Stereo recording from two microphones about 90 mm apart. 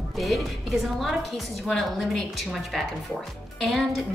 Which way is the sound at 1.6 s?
Centre (ahead or behind).